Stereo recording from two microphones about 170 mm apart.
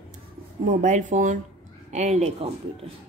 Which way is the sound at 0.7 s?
45° right (ahead or behind).